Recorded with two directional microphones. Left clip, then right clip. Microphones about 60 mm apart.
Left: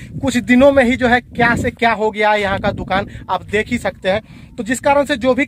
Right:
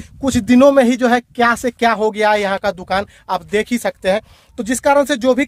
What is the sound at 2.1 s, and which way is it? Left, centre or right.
Speech, centre.